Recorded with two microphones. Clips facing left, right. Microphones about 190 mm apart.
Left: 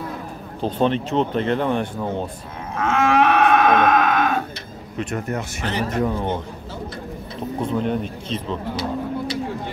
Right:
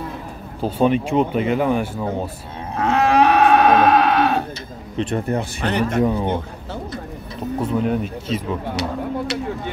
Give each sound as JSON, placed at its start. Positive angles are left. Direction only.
{"t": 0.6, "sound": "speech", "side_deg": -10}
{"t": 2.7, "sound": "livestock", "side_deg": -35}
{"t": 4.9, "sound": "speech", "side_deg": -30}
{"t": 5.6, "sound": "speech", "side_deg": -60}
{"t": 5.9, "sound": "speech", "side_deg": -15}
{"t": 7.6, "sound": "speech", "side_deg": -5}